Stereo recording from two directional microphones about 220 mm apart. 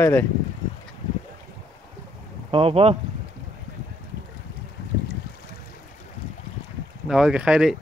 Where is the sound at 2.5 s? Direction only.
25° right (ahead or behind).